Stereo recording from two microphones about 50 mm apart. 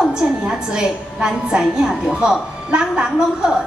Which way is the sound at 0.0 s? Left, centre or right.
Centre.